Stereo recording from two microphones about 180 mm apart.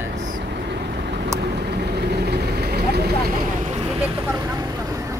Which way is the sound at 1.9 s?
65° right (ahead or behind).